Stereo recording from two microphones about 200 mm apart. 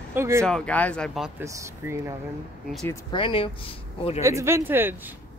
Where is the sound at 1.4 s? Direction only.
15° right (ahead or behind).